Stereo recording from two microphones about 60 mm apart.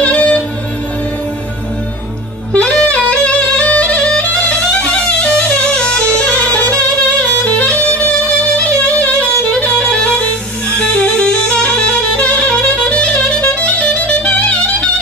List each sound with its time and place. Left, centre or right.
0.0 s music: centre
2.5 s music: centre